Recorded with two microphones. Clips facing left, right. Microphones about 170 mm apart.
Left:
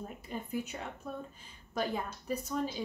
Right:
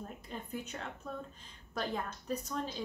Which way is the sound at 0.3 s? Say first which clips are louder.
Left 5 dB; 10° left (ahead or behind).